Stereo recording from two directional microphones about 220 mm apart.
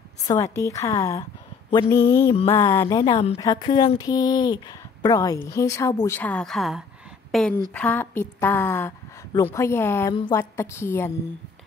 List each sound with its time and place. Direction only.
0.3 s a woman's voice: 15° left (ahead or behind)